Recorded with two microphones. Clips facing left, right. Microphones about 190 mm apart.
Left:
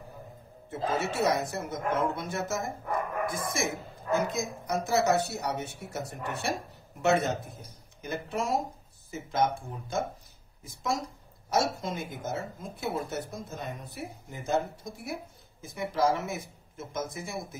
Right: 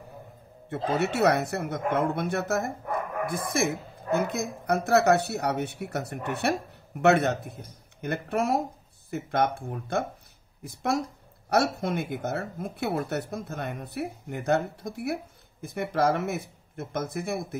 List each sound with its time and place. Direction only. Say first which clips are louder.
0.7 s speech: right 3 dB; 65° right (ahead or behind)